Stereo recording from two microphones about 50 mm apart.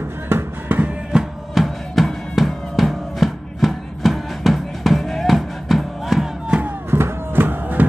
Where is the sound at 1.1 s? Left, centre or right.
Centre.